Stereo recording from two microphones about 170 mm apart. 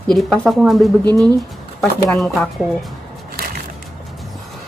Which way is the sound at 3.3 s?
65° right (ahead or behind).